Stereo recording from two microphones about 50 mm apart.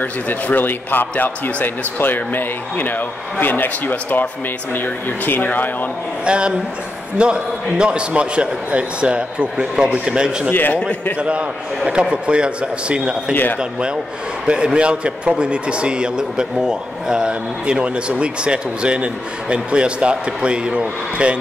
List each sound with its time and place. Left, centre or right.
0.0 s speech: left
6.2 s a man's voice: right
10.7 s a man's voice: left
11.1 s a man's voice: right
13.3 s speech: left
13.6 s a man's voice: centre